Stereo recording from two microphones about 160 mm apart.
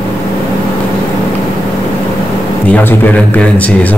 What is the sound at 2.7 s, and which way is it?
A man's voice, 15° left (ahead or behind).